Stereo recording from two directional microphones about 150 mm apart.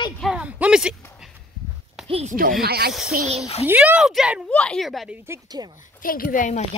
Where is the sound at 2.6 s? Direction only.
90° right.